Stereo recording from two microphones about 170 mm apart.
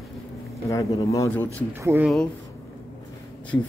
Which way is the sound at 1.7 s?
15° right (ahead or behind).